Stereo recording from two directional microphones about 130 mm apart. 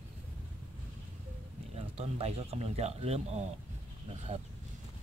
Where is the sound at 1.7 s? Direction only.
55° right (ahead or behind).